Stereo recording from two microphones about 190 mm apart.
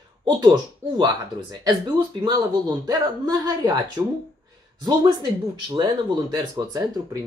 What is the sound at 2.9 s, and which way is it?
Speech, 20° right (ahead or behind).